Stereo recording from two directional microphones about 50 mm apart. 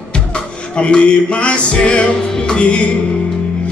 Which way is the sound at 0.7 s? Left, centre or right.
Left.